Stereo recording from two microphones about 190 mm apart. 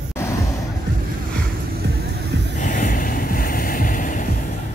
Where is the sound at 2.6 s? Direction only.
45° left (ahead or behind).